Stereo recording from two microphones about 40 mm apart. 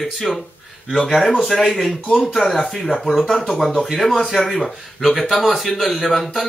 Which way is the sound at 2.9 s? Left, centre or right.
Centre.